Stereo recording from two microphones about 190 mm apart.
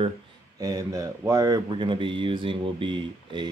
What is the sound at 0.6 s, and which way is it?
Speech, 20° right (ahead or behind).